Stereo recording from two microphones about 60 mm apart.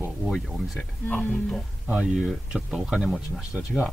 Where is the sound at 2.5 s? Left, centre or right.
Centre.